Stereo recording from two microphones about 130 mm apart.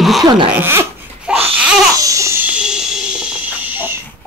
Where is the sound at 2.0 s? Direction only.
25° right (ahead or behind).